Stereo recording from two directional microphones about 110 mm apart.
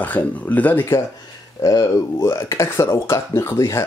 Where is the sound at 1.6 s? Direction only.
35° left (ahead or behind).